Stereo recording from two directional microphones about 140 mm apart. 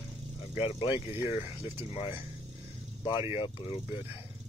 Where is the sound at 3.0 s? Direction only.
35° left (ahead or behind).